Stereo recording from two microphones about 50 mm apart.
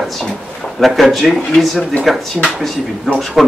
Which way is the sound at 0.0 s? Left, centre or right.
Centre.